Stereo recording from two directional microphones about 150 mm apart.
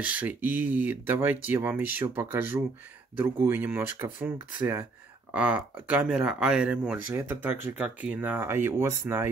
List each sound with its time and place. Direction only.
0.0 s speech: 10° right (ahead or behind)